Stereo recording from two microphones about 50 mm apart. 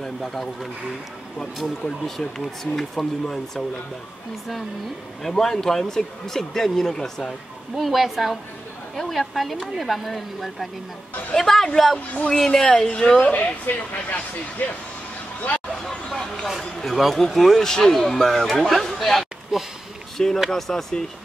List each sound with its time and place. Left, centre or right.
0.0 s speech: centre
1.8 s speech: centre
5.2 s speech: centre
7.7 s speech: centre
13.2 s a woman's voice: left
15.8 s hubbub: centre
16.7 s speech: centre